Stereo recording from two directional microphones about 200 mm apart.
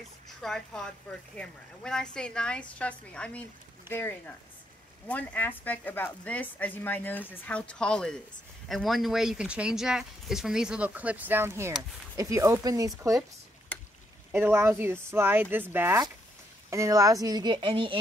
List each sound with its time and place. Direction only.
0.4 s speech: centre (ahead or behind); by 13.2 s 15° right (ahead or behind)
14.3 s speech: 10° right (ahead or behind)